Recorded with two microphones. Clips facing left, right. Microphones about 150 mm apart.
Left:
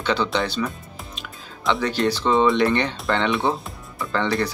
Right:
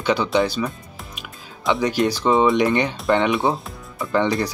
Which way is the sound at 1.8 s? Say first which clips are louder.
Right 3 dB; 10° right (ahead or behind).